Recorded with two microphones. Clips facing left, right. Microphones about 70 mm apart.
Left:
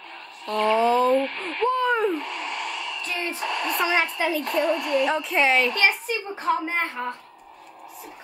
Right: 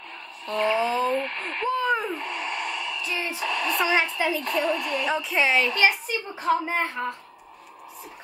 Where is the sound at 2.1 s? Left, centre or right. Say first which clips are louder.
Left 2 dB; right.